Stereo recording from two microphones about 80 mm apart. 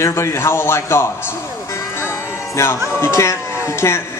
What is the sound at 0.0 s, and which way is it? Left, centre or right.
Speech, left.